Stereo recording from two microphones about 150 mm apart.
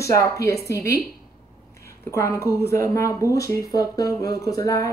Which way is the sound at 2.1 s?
20° left (ahead or behind).